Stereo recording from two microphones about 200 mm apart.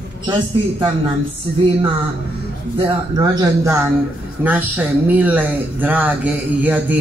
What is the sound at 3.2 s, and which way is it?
Speech, 15° right (ahead or behind).